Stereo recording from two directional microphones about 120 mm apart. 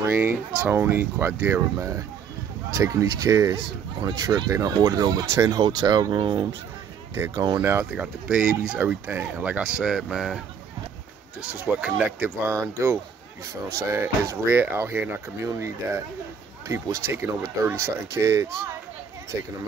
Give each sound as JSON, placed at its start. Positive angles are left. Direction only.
{"t": 0.0, "sound": "speech", "side_deg": -15}
{"t": 7.9, "sound": "speech", "side_deg": -10}
{"t": 11.5, "sound": "speech", "side_deg": -15}